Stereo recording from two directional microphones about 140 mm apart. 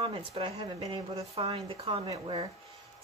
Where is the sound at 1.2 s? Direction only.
45° right (ahead or behind).